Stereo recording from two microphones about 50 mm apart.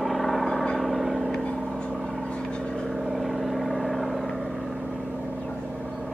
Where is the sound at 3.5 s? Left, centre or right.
Centre.